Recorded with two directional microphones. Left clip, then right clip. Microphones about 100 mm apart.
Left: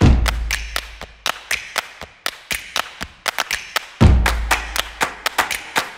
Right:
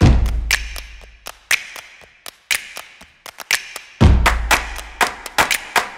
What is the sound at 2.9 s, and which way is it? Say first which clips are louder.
Clapping: left 13 dB; 20° right (ahead or behind).